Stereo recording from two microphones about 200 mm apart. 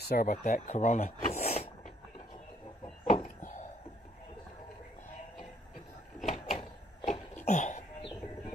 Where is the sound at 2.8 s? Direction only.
35° left (ahead or behind).